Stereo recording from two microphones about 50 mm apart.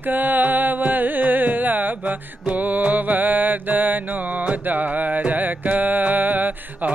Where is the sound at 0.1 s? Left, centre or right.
Right.